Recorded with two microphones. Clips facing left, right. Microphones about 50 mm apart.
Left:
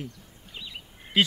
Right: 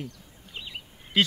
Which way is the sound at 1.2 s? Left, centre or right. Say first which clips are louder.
Left 1 dB; centre.